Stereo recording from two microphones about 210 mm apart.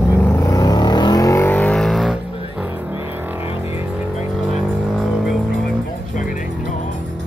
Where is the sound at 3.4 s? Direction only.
30° left (ahead or behind).